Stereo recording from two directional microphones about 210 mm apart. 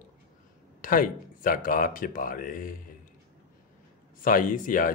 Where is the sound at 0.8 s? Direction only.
40° left (ahead or behind).